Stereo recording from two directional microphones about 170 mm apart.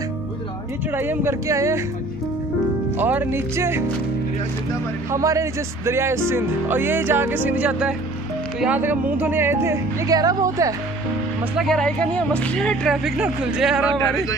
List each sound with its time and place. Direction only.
0.9 s speech: 15° right (ahead or behind)
3.0 s speech: 10° right (ahead or behind)
5.1 s speech: 20° right (ahead or behind)
11.5 s speech: centre (ahead or behind)